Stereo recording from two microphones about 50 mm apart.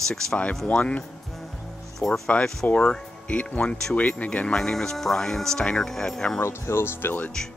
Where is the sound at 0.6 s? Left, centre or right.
Left.